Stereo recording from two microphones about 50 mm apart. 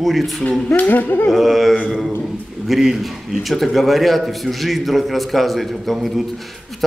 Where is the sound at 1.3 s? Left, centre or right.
Centre.